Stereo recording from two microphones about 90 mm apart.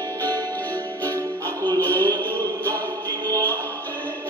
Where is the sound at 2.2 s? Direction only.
20° left (ahead or behind).